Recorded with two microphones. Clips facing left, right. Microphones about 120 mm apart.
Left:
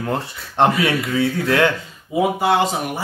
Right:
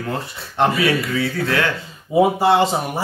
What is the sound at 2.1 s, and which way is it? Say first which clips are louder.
Speech: right 3 dB; 30° right (ahead or behind).